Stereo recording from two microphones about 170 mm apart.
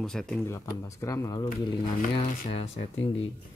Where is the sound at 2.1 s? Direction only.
35° left (ahead or behind).